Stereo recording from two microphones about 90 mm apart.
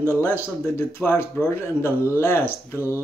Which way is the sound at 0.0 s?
25° left (ahead or behind).